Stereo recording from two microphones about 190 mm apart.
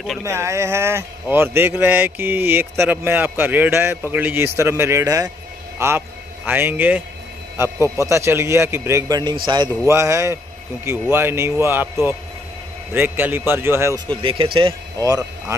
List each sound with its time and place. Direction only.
0.2 s a man's voice: 15° right (ahead or behind)
14.2 s speech: 25° right (ahead or behind)